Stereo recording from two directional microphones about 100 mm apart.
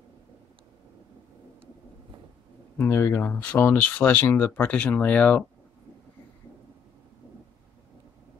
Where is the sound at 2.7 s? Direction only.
25° left (ahead or behind).